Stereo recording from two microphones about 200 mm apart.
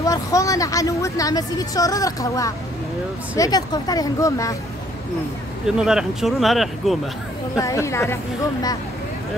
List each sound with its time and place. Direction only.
0.0 s speech: 15° left (ahead or behind)
5.8 s speech: 5° right (ahead or behind)
7.5 s speech: 15° left (ahead or behind)